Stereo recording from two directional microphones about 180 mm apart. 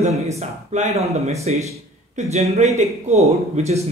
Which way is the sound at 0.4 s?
40° right (ahead or behind).